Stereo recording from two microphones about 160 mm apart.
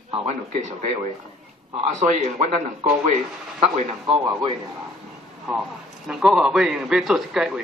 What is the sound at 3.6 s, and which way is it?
Speech, 40° right (ahead or behind).